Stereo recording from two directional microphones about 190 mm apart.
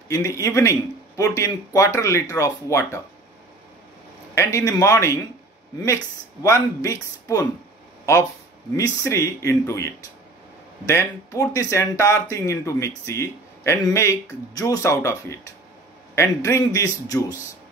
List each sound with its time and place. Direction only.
0.1 s speech: 15° left (ahead or behind)
4.4 s speech: 15° left (ahead or behind)
6.4 s speech: 15° left (ahead or behind)